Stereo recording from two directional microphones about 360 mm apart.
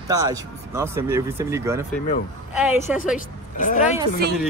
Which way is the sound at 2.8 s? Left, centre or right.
Left.